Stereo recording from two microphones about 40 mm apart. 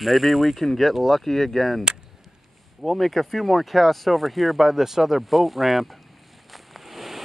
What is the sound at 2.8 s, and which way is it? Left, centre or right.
Speech, centre.